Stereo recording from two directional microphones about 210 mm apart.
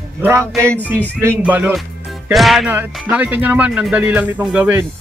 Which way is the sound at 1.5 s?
5° right (ahead or behind).